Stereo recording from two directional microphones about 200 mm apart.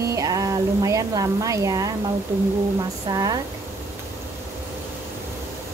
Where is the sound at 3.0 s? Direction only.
20° right (ahead or behind).